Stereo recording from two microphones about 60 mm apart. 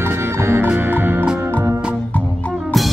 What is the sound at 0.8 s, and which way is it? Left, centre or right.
Music, right.